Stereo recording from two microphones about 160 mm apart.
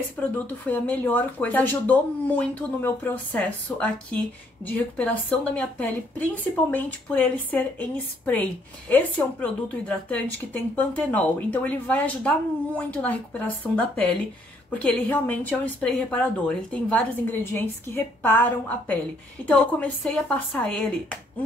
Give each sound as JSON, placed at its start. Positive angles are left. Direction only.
{"t": 0.2, "sound": "a woman's voice", "side_deg": 10}